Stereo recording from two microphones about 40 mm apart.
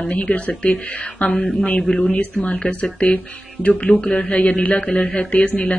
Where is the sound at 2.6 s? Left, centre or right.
Left.